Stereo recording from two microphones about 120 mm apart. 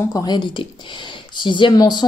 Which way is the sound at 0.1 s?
35° left (ahead or behind).